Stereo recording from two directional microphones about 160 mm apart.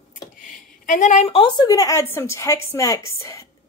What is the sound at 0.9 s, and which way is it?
A woman's voice, 50° left (ahead or behind).